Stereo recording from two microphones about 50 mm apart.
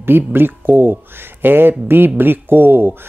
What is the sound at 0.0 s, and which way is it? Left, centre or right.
Speech, right.